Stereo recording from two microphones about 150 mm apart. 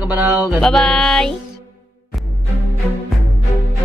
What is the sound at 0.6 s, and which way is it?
Music, 5° left (ahead or behind).